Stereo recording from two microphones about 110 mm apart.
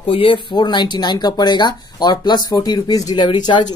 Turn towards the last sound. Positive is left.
turn(degrees=40)  # may be behind; listen again after turning